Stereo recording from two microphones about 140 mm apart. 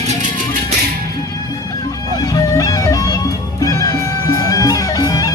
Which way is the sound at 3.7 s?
20° left (ahead or behind).